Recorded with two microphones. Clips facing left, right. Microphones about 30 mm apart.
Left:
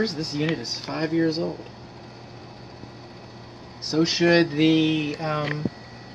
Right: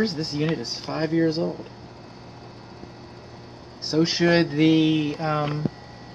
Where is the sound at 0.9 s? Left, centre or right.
Centre.